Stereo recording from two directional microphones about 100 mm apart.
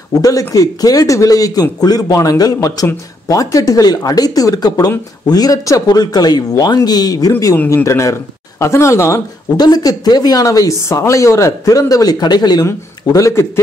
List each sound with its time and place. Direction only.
0.2 s speech: 35° left (ahead or behind)
7.5 s speech: 15° left (ahead or behind)
7.8 s speech: 30° left (ahead or behind)
9.6 s speech: 40° left (ahead or behind)